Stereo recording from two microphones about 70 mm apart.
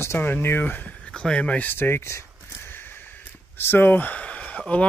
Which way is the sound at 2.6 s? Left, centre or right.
Left.